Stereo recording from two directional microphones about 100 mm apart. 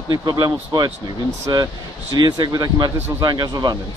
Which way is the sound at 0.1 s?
45° right (ahead or behind).